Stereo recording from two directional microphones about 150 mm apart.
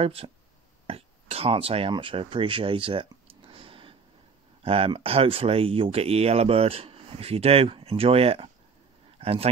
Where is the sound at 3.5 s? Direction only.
35° right (ahead or behind).